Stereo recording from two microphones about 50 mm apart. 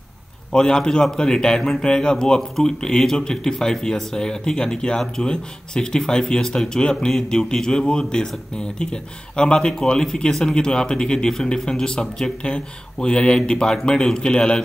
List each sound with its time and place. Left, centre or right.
0.5 s speech: centre